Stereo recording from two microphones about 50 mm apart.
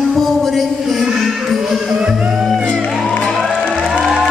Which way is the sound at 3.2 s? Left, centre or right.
Centre.